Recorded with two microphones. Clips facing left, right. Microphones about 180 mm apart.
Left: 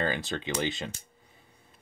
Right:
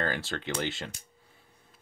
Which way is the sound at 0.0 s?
15° left (ahead or behind).